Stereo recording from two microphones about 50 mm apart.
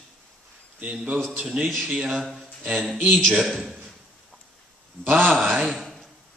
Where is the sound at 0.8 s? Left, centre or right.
Right.